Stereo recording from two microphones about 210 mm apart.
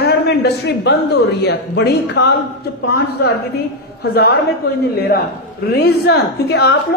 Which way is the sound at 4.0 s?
50° left (ahead or behind).